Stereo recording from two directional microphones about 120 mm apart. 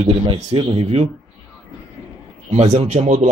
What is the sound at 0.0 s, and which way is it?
Speech, 55° right (ahead or behind).